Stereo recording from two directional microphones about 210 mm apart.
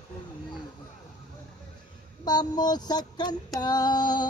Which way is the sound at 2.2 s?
20° left (ahead or behind).